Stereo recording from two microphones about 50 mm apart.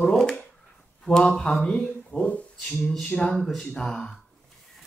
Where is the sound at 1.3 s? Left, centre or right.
Centre.